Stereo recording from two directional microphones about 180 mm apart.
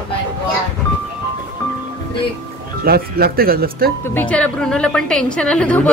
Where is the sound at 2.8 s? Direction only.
60° right (ahead or behind).